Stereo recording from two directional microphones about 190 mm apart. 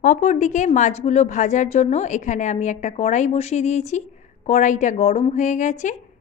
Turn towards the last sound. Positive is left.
turn(degrees=40)  # may be behind; listen again after turning